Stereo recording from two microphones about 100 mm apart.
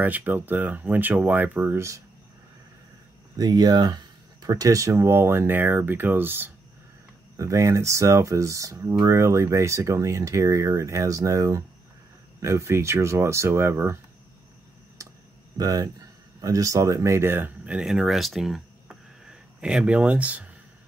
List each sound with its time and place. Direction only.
0.0 s speech: 15° right (ahead or behind)
3.3 s speech: 45° right (ahead or behind); by 6.5 s 20° right (ahead or behind)
7.3 s speech: 30° right (ahead or behind)
15.0 s clicking: 35° right (ahead or behind)
15.5 s speech: 35° right (ahead or behind); by 20.4 s 15° right (ahead or behind)